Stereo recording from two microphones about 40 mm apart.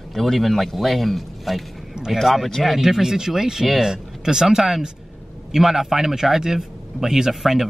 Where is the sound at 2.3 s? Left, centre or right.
Centre.